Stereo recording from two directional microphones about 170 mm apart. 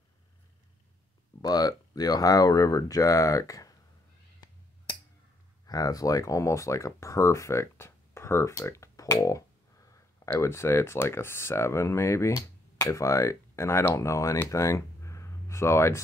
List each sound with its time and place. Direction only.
1.4 s speech: 20° left (ahead or behind)
5.7 s speech: 20° left (ahead or behind)